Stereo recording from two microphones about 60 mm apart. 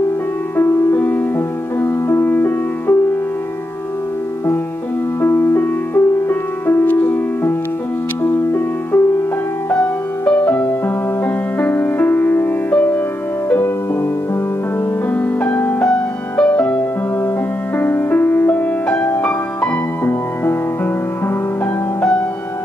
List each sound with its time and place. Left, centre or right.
0.6 s music: left
5.2 s music: left
9.8 s music: left
15.1 s music: left
17.7 s music: left
18.5 s music: left